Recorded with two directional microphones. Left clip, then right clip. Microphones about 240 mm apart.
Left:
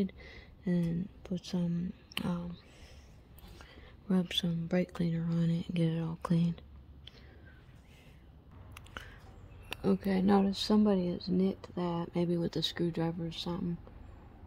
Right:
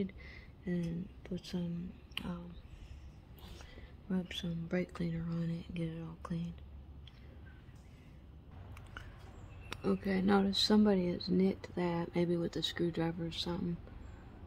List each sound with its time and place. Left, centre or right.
0.0 s speech: left
4.1 s speech: left
9.0 s a sound: left
9.7 s speech: left